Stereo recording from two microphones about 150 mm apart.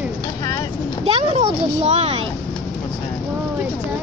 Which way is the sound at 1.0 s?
40° right (ahead or behind).